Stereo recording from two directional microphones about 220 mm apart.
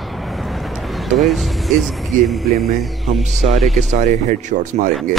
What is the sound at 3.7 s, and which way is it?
A man's voice, 35° right (ahead or behind).